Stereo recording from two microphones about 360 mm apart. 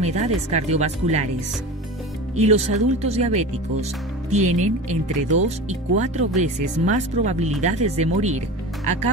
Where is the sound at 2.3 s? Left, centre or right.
Centre.